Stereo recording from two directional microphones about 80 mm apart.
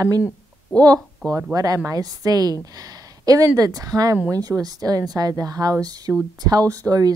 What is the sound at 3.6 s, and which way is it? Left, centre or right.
Speech, right.